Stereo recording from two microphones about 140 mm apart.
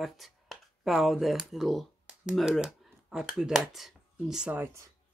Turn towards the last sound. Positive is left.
turn(degrees=-10)  # may be behind; listen again after turning